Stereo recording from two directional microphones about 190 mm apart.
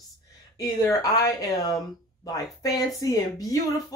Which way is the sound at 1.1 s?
20° left (ahead or behind).